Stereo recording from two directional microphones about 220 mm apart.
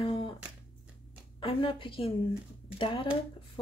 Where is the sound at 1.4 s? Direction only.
25° left (ahead or behind).